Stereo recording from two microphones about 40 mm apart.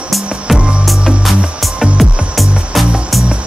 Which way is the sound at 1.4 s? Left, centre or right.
Centre.